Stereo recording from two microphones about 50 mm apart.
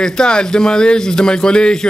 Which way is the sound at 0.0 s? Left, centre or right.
Centre.